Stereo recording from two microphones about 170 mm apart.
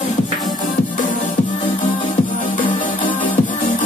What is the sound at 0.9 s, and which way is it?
Music, 50° left (ahead or behind).